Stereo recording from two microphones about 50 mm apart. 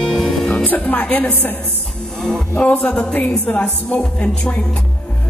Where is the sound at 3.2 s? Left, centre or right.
Left.